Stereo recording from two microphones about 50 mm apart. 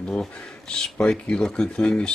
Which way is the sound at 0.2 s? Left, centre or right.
Centre.